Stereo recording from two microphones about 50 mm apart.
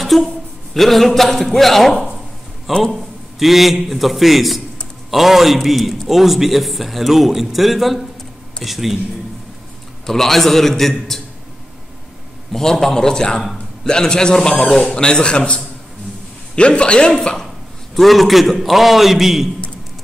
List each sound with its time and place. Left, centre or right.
0.0 s a man's voice: centre
10.0 s a man's voice: centre
12.5 s a man's voice: centre
17.9 s a man's voice: centre